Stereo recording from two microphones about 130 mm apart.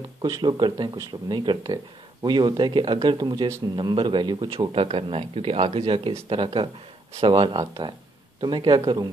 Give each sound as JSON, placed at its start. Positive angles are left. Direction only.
{"t": 0.2, "sound": "speech", "side_deg": -35}